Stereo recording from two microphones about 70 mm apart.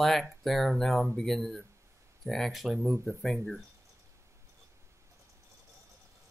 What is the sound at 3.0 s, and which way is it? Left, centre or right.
Speech, centre.